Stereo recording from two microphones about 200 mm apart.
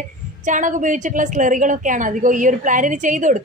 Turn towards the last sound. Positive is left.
turn(degrees=-40)  # may be behind; listen again after turning